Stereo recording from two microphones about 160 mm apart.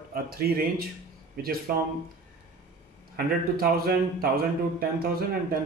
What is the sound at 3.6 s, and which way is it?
A man's voice, 70° right (ahead or behind).